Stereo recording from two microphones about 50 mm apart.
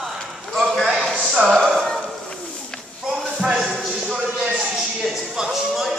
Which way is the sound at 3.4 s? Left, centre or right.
Right.